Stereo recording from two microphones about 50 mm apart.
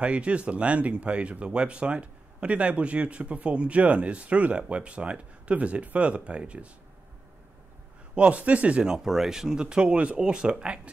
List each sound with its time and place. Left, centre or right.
0.0 s speech: right
8.1 s speech: right
8.8 s speech: centre